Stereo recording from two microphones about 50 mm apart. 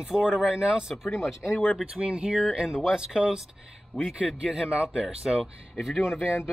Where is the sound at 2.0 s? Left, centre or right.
Right.